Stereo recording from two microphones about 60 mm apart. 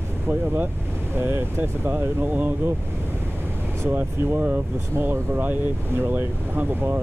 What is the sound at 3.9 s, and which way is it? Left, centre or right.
Speech, right.